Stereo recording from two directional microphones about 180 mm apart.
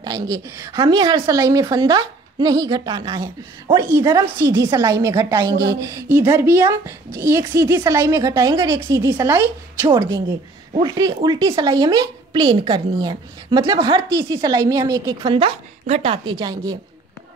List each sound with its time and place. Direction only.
0.0 s a woman's voice: 20° right (ahead or behind)